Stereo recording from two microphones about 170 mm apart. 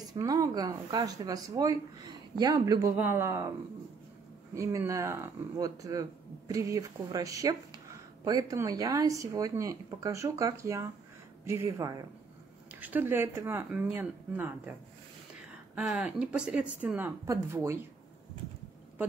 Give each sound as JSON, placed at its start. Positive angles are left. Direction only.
{"t": 0.1, "sound": "speech", "side_deg": -20}
{"t": 4.6, "sound": "a woman's voice", "side_deg": -20}